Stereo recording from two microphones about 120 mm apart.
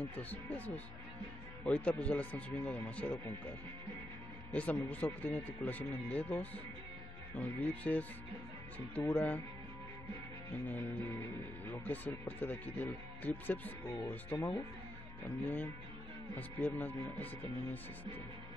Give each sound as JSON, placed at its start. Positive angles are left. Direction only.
{"t": 0.1, "sound": "speech", "side_deg": 10}
{"t": 4.5, "sound": "speech", "side_deg": 10}
{"t": 10.5, "sound": "speech", "side_deg": 15}